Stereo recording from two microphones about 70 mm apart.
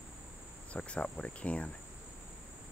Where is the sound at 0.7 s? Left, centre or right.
Centre.